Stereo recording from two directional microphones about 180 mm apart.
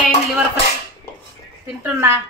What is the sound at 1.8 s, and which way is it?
Speech, 10° right (ahead or behind).